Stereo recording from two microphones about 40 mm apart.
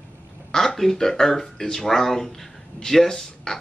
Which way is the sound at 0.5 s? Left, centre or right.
Centre.